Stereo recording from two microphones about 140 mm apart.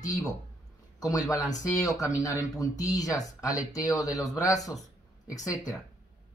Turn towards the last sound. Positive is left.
turn(degrees=25)  # may be behind; listen again after turning